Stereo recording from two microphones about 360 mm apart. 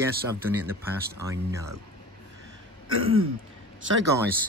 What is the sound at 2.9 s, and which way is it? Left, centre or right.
Throat clearing, right.